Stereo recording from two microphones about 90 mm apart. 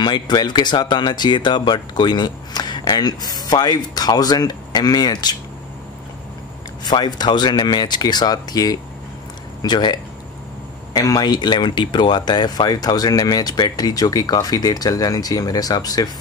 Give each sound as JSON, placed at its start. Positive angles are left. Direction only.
{"t": 0.0, "sound": "speech", "side_deg": 50}
{"t": 6.8, "sound": "speech", "side_deg": 50}
{"t": 11.0, "sound": "speech", "side_deg": 45}